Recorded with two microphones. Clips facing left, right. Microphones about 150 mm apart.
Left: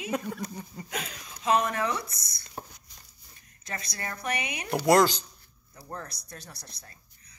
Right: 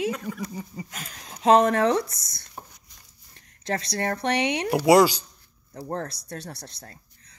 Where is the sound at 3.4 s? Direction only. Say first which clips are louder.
Right 10 dB; 80° right.